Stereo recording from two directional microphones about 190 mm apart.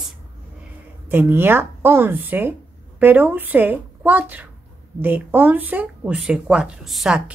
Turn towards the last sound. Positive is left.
turn(degrees=0)  # may be behind; listen again after turning